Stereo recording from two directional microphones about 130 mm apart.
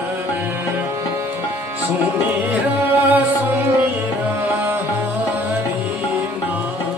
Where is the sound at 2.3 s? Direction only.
15° right (ahead or behind).